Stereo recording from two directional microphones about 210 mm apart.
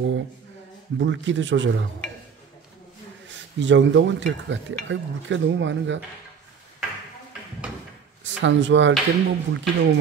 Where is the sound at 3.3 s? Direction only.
60° right (ahead or behind).